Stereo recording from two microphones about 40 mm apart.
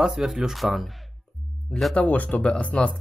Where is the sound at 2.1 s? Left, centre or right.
Left.